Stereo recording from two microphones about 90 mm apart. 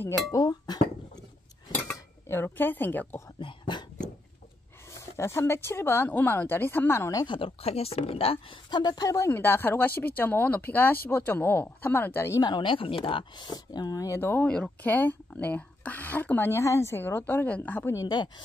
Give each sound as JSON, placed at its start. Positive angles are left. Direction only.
{"t": 0.3, "sound": "speech", "side_deg": 45}
{"t": 2.2, "sound": "speech", "side_deg": 25}
{"t": 3.3, "sound": "a sound", "side_deg": 60}
{"t": 4.9, "sound": "speech", "side_deg": 30}
{"t": 7.2, "sound": "a woman's voice", "side_deg": 80}
{"t": 9.2, "sound": "speech", "side_deg": 25}
{"t": 12.4, "sound": "speech", "side_deg": 55}
{"t": 13.5, "sound": "speech", "side_deg": 45}
{"t": 14.4, "sound": "speech", "side_deg": 15}
{"t": 17.9, "sound": "speech", "side_deg": 50}